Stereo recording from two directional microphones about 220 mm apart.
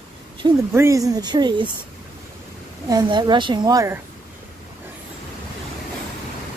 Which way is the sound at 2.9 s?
20° right (ahead or behind).